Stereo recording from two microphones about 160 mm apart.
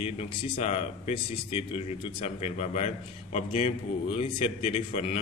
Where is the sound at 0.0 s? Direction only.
35° left (ahead or behind).